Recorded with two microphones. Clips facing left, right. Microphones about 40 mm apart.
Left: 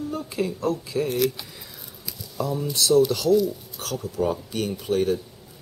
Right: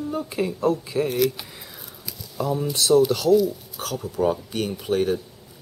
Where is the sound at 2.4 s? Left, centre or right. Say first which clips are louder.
Right 2 dB; centre.